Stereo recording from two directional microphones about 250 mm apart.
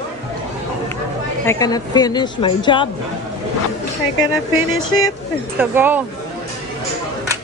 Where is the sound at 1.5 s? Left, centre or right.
Centre.